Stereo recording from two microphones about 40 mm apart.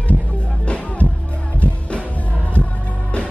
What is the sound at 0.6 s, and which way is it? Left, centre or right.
Music, left.